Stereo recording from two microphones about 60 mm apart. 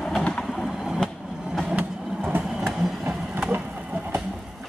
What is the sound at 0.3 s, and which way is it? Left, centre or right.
Vehicle, centre.